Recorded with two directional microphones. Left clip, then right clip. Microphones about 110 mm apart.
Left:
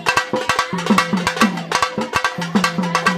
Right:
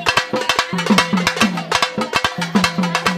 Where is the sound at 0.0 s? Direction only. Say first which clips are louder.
Right 1 dB; centre (ahead or behind).